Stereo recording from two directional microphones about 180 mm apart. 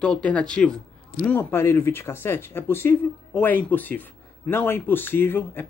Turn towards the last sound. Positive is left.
turn(degrees=10)  # may be behind; listen again after turning